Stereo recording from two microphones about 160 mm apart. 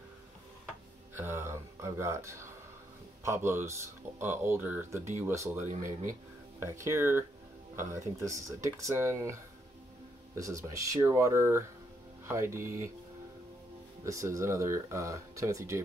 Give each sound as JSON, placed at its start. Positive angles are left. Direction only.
{"t": 1.1, "sound": "speech", "side_deg": -15}
{"t": 5.6, "sound": "speech", "side_deg": -50}
{"t": 6.6, "sound": "speech", "side_deg": -15}
{"t": 14.0, "sound": "speech", "side_deg": -20}